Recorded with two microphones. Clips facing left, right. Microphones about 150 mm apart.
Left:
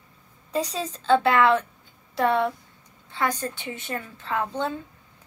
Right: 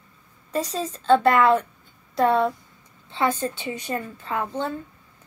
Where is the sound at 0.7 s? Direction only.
10° right (ahead or behind).